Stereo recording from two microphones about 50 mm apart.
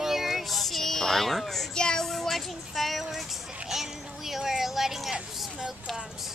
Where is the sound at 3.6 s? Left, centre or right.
Centre.